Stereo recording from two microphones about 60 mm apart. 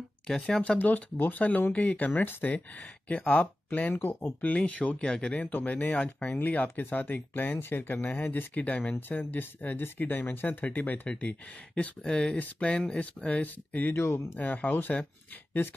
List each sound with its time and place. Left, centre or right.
0.7 s speech: left
3.9 s speech: left
4.6 s speech: left
5.5 s speech: left; by 12.4 s centre
12.4 s speech: left
13.9 s speech: left
14.4 s speech: left